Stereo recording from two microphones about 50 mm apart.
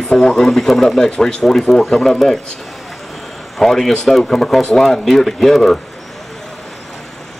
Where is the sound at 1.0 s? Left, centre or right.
Centre.